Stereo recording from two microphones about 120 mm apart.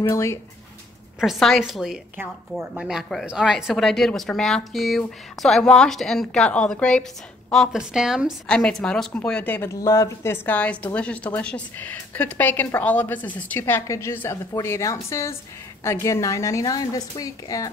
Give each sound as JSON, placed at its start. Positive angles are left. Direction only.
{"t": 0.1, "sound": "a woman's voice", "side_deg": 25}
{"t": 1.2, "sound": "a woman's voice", "side_deg": 0}
{"t": 9.8, "sound": "a woman's voice", "side_deg": 25}